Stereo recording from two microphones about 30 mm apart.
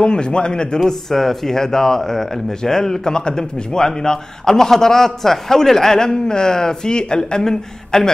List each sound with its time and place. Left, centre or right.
0.0 s a man's voice: left
0.8 s a man's voice: centre